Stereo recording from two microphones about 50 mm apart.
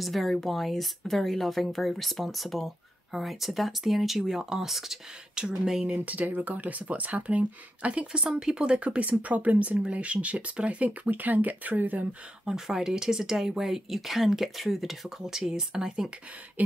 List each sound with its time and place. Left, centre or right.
0.0 s speech: centre
6.0 s speech: right
12.4 s speech: centre
16.6 s a sound: right